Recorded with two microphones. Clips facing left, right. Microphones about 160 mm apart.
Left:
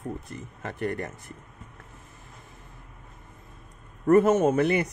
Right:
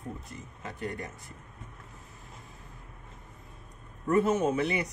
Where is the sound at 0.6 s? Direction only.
65° left (ahead or behind).